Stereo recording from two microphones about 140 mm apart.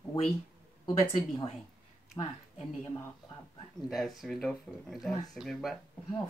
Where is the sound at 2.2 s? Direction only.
30° left (ahead or behind).